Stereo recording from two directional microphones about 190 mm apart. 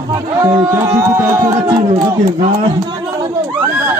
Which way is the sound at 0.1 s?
15° right (ahead or behind).